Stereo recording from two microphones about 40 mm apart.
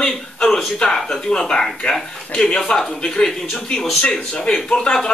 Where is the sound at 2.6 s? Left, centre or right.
Centre.